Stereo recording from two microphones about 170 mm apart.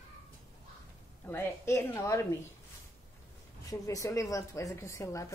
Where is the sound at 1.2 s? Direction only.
15° left (ahead or behind).